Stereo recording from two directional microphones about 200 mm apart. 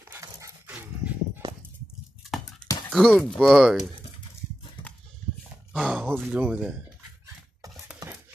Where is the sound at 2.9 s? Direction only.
5° left (ahead or behind).